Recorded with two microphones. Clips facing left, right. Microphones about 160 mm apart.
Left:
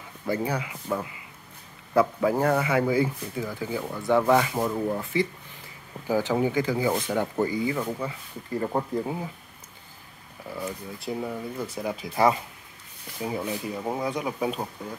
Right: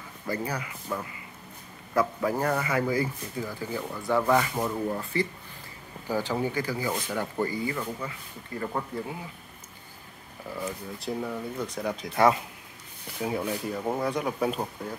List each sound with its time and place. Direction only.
0.3 s speech: 10° left (ahead or behind)
8.5 s speech: 25° left (ahead or behind)
10.6 s speech: centre (ahead or behind)